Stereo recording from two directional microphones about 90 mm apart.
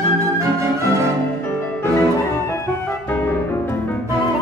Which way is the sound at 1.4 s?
20° left (ahead or behind).